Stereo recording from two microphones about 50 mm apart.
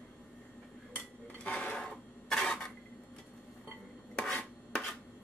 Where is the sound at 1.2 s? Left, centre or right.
Left.